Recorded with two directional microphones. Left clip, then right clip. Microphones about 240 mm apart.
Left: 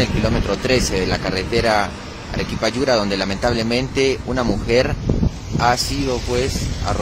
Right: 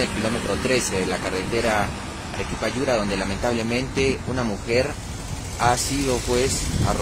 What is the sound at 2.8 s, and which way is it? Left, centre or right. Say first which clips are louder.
Speech: left 4 dB; centre.